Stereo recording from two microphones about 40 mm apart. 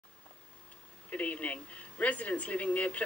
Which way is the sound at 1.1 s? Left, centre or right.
Left.